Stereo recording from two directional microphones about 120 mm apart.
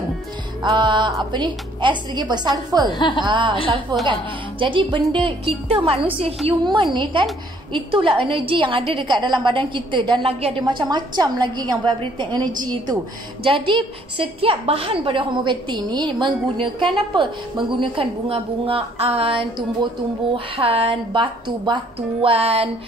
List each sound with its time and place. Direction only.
0.7 s a woman's voice: 40° right (ahead or behind)
2.9 s speech: 40° left (ahead or behind)
3.3 s a woman's voice: 40° right (ahead or behind)
13.4 s a woman's voice: 45° right (ahead or behind)
22.2 s a woman's voice: 55° right (ahead or behind)